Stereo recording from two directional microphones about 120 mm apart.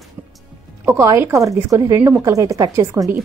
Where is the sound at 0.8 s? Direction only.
25° right (ahead or behind).